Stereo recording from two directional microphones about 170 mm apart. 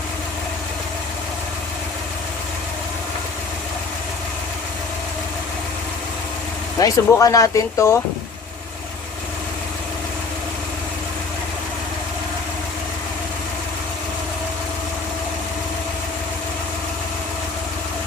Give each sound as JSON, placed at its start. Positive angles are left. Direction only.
{"t": 6.8, "sound": "speech", "side_deg": 20}